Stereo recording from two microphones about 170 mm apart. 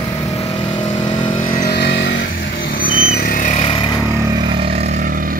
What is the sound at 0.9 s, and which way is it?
Vehicle, 25° left (ahead or behind).